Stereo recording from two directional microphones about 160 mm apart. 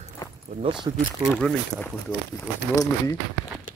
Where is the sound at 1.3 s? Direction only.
10° left (ahead or behind).